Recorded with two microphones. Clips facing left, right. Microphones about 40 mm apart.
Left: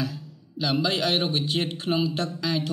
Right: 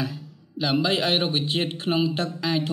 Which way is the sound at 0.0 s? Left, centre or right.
Centre.